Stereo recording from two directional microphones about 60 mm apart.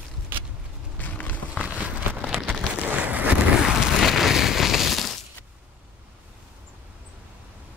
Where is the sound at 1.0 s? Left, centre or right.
Left.